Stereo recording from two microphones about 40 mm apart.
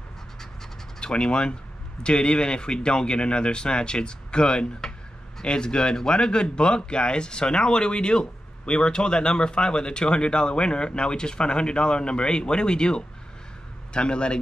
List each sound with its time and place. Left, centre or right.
1.0 s speech: left